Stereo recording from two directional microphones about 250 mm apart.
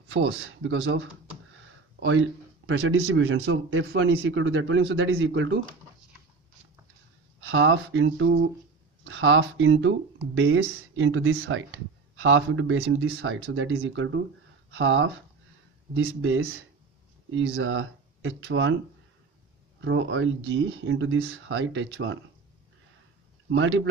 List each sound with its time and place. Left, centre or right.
0.1 s speech: right
7.4 s speech: right
19.8 s speech: right
23.5 s speech: right